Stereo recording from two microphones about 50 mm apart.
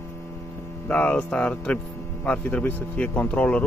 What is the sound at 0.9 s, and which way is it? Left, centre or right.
Speech, left.